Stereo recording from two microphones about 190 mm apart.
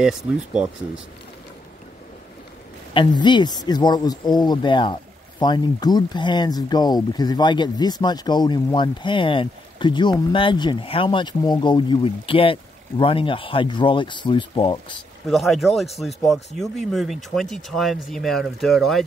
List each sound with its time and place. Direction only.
2.9 s speech: 25° left (ahead or behind)
15.2 s speech: centre (ahead or behind)